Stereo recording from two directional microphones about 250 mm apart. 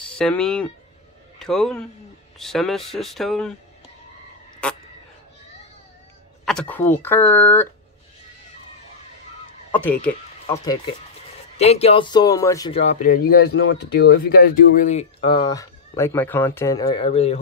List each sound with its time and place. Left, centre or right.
0.2 s speech: centre
4.6 s frog: centre
6.4 s speech: centre
9.7 s speech: centre; by 13.3 s left
13.5 s speech: left